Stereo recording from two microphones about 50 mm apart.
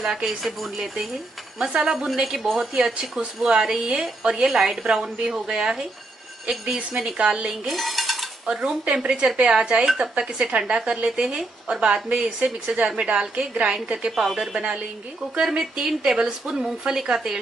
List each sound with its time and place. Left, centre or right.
0.0 s a woman's voice: centre
2.7 s speech: centre
7.6 s dishes: centre
8.5 s speech: centre
8.8 s speech: right
14.1 s speech: centre
14.5 s speech: centre